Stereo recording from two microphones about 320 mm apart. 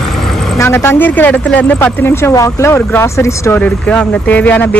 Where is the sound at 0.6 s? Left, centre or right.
Centre.